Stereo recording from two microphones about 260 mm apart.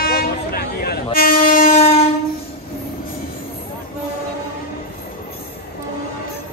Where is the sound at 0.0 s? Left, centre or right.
Left.